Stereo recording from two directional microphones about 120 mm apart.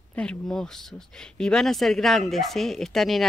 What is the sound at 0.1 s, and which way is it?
Speech, 10° left (ahead or behind).